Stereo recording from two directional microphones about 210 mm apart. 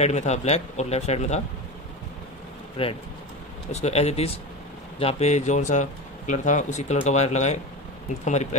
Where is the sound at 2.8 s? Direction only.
25° left (ahead or behind).